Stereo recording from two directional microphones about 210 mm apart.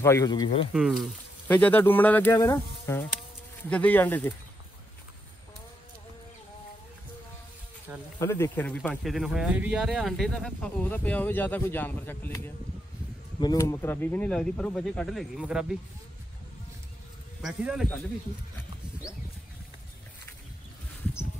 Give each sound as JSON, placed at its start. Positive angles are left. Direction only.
{"t": 0.0, "sound": "speech", "side_deg": 15}
{"t": 0.7, "sound": "speech", "side_deg": 0}
{"t": 8.2, "sound": "speech", "side_deg": 10}
{"t": 17.4, "sound": "speech", "side_deg": 0}